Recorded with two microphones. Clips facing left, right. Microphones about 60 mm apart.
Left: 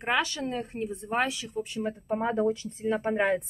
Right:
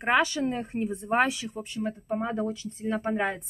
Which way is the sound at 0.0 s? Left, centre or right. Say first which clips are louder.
Right 4 dB; centre.